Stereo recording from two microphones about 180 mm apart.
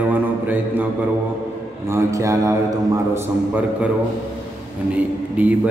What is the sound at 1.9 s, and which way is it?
Speech, 15° right (ahead or behind).